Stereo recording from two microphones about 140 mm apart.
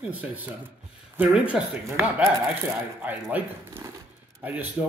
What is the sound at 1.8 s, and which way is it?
Speech, 20° right (ahead or behind).